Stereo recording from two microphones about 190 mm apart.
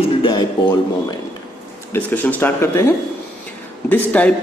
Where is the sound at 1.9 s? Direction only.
10° left (ahead or behind).